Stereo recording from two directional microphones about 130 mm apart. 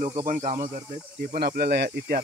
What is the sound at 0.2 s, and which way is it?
Speech, 90° right.